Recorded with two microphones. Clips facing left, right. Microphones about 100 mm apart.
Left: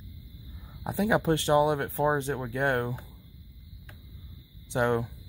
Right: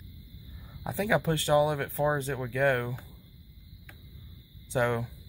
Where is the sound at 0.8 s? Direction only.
25° left (ahead or behind).